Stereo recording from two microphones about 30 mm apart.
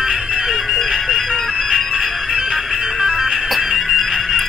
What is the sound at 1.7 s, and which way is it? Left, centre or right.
Music, centre.